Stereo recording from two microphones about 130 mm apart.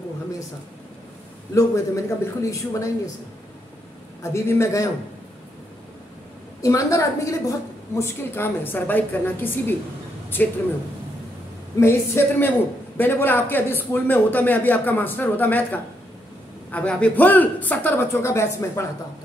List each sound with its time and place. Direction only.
1.5 s a woman's voice: 25° left (ahead or behind)
4.2 s a woman's voice: 20° left (ahead or behind)
6.6 s a woman's voice: 25° left (ahead or behind)
11.8 s a man's voice: 20° left (ahead or behind)